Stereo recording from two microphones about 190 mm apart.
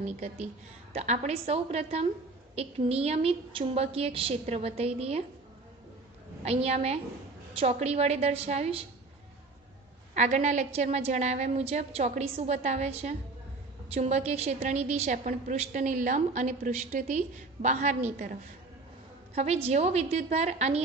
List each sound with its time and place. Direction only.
0.0 s a woman's voice: 35° right (ahead or behind)
6.4 s a woman's voice: 35° right (ahead or behind)
10.1 s a woman's voice: 40° right (ahead or behind)